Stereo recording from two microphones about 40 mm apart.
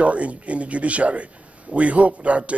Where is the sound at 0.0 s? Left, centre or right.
Right.